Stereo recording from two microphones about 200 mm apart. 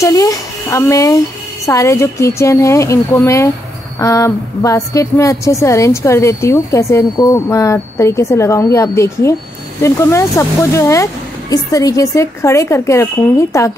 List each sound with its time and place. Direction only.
0.0 s a woman's voice: 15° left (ahead or behind)